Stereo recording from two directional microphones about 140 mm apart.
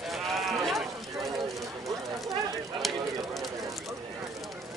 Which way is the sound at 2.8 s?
Centre (ahead or behind).